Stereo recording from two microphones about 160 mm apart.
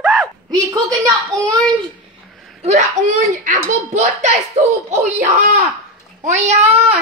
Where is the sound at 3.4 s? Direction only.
50° right (ahead or behind).